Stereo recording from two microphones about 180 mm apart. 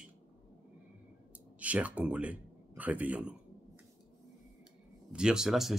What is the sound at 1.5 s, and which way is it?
Speech, 10° right (ahead or behind).